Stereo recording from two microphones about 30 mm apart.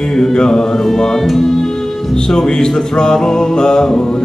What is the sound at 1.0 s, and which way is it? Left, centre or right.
Speech, centre.